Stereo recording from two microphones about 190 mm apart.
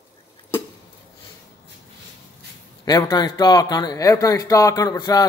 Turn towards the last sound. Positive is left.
turn(degrees=20)  # may be behind; listen again after turning